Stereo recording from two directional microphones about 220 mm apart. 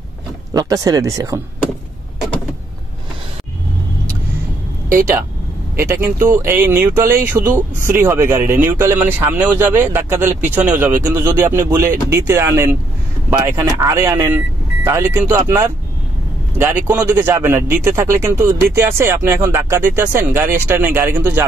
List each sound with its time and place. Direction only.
0.5 s speech: 15° right (ahead or behind)
5.8 s speech: 10° right (ahead or behind)